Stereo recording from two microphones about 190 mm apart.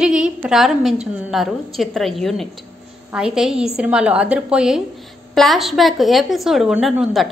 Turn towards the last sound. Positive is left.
turn(degrees=0)  # may be behind; listen again after turning